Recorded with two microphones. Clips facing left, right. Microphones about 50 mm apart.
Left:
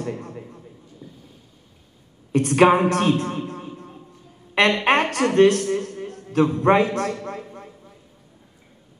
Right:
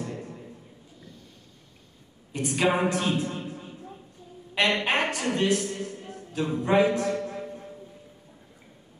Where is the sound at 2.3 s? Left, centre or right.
Left.